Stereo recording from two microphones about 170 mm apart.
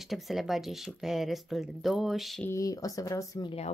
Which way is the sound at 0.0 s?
Centre (ahead or behind).